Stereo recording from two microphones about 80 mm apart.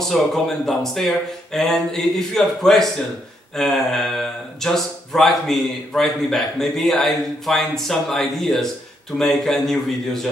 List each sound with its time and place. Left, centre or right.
0.0 s speech: centre